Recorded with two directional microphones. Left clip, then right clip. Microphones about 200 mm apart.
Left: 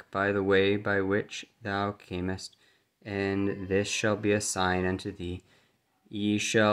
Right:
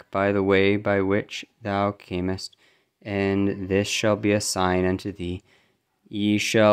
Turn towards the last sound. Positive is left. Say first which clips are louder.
# right 5 dB
turn(degrees=-40)  # may be behind; listen again after turning